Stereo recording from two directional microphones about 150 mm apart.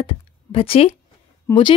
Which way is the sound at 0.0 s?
40° left (ahead or behind).